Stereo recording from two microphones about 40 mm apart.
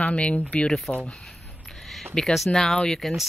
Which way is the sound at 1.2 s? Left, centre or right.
Centre.